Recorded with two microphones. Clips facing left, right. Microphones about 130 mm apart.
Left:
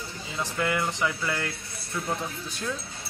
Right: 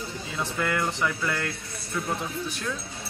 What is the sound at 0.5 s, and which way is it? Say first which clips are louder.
Speech: even; 10° left (ahead or behind).